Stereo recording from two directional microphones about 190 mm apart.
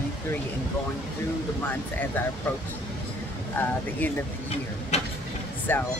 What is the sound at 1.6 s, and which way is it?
Speech, 10° left (ahead or behind).